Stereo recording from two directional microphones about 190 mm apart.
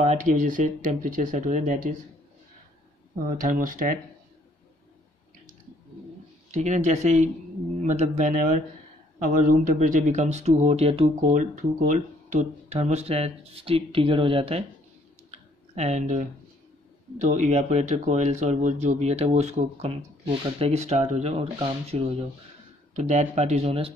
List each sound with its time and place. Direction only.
0.0 s speech: 40° right (ahead or behind)
3.3 s speech: 45° right (ahead or behind)
6.5 s speech: 40° right (ahead or behind)
15.3 s a sound: 35° right (ahead or behind)
17.2 s speech: 40° right (ahead or behind)